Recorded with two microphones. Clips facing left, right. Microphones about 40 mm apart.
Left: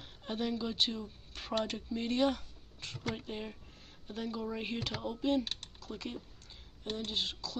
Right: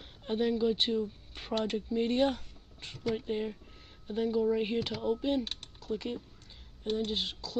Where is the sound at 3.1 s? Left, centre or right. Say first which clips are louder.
Right 8 dB; centre.